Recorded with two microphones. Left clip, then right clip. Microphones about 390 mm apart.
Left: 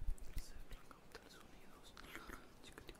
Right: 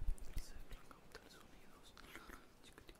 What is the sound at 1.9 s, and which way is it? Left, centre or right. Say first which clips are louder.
Whispering: left 3 dB; left.